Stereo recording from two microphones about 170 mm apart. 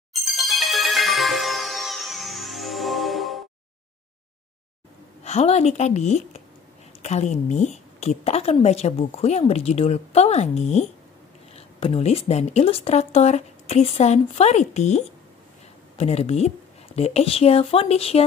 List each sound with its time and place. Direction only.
0.3 s music: centre (ahead or behind)
5.2 s a woman's voice: 40° left (ahead or behind)